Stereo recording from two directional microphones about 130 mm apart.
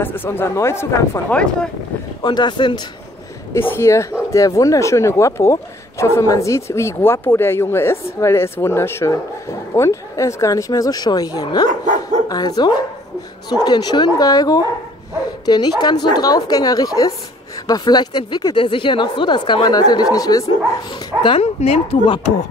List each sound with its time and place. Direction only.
0.0 s speech: 15° left (ahead or behind)
2.2 s speech: 35° left (ahead or behind)
3.5 s speech: 20° left (ahead or behind)
20.9 s speech: 40° left (ahead or behind)
21.4 s speech: 55° left (ahead or behind)
22.0 s speech: 40° left (ahead or behind)